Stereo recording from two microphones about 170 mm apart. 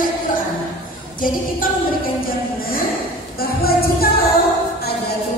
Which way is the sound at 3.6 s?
65° left (ahead or behind).